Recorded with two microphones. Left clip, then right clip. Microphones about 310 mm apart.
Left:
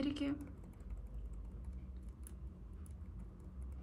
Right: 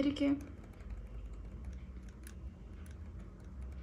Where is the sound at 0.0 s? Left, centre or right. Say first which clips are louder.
Right 7 dB; centre.